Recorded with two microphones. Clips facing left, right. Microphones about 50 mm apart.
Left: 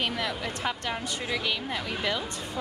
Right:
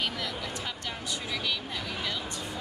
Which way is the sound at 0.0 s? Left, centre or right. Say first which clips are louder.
Left 3 dB; left.